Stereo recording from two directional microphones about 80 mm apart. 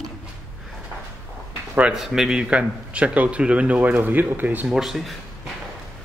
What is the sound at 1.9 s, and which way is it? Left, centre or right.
Speech, centre.